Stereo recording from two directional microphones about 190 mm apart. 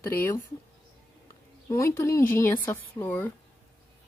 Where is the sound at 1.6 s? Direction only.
15° left (ahead or behind).